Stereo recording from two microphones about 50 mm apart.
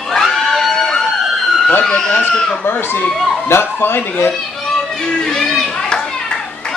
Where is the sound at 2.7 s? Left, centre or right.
Left.